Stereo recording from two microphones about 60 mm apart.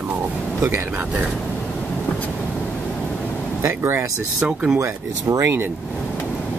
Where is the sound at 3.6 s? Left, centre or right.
Right.